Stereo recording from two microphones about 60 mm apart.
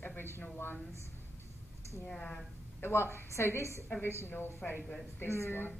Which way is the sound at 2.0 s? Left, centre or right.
Centre.